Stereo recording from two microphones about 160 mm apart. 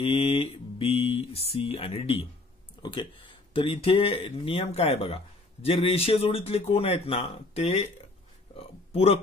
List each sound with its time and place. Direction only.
0.0 s speech: 35° left (ahead or behind)
8.9 s speech: 40° left (ahead or behind)